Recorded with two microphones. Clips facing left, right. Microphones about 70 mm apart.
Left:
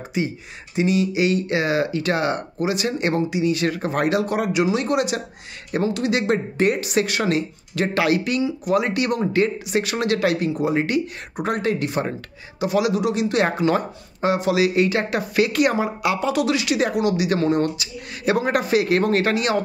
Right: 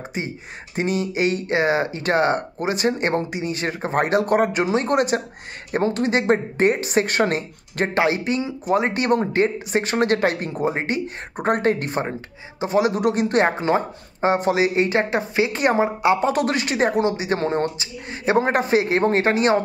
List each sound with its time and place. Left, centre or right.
0.2 s speech: right